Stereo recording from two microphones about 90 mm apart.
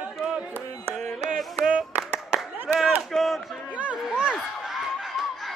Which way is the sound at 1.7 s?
15° right (ahead or behind).